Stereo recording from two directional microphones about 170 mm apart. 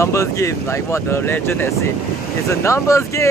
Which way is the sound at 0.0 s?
20° left (ahead or behind).